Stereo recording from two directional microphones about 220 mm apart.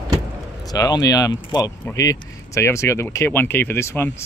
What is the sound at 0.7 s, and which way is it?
Speech, 15° left (ahead or behind).